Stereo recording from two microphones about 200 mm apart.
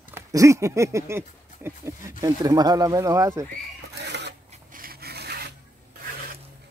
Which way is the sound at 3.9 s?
60° right (ahead or behind).